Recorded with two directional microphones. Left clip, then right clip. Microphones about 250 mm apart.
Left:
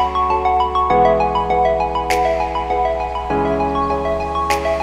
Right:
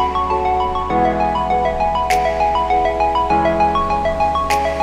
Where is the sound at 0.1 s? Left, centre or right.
Centre.